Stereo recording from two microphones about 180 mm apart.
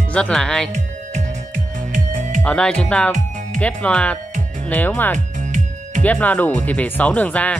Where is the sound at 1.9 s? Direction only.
45° right (ahead or behind).